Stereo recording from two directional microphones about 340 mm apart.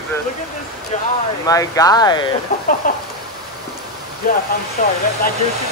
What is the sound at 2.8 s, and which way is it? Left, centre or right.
Speech, left.